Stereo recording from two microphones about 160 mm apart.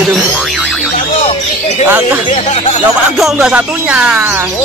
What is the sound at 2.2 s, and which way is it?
Speech, 45° left (ahead or behind).